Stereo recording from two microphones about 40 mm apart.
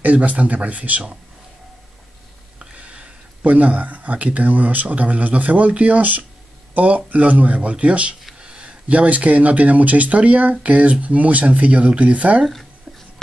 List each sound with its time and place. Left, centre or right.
0.0 s speech: right
2.6 s speech: right